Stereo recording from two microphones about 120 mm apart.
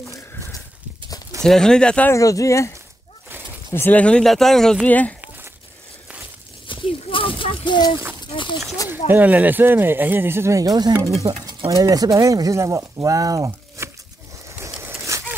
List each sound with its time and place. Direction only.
1.4 s speech: 5° left (ahead or behind)
2.0 s speech: 25° left (ahead or behind)
3.7 s speech: 15° left (ahead or behind)
4.8 s speech: 15° left (ahead or behind)
6.7 s a sound: 45° left (ahead or behind)
8.8 s speech: 15° right (ahead or behind)
14.8 s a sound: 20° right (ahead or behind)